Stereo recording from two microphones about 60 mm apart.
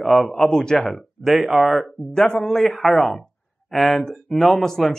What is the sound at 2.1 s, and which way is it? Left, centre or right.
Speech, centre.